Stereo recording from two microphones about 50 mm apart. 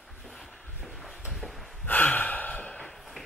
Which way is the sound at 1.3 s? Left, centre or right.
Centre.